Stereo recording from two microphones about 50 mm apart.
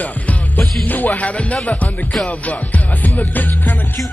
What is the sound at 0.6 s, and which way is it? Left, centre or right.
Music, left.